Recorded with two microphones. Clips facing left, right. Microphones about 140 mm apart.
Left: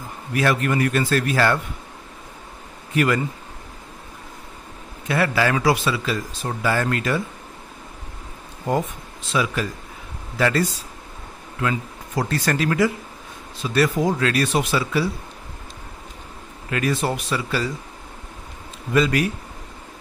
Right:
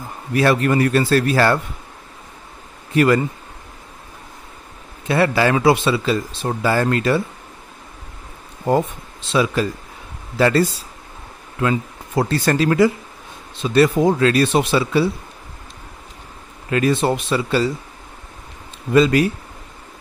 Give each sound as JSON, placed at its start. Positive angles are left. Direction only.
{"t": 0.3, "sound": "a man's voice", "side_deg": -35}
{"t": 2.9, "sound": "speech", "side_deg": -35}
{"t": 5.0, "sound": "speech", "side_deg": -30}
{"t": 8.6, "sound": "a man's voice", "side_deg": -30}
{"t": 12.2, "sound": "speech", "side_deg": -30}
{"t": 16.7, "sound": "speech", "side_deg": -25}
{"t": 18.9, "sound": "speech", "side_deg": -30}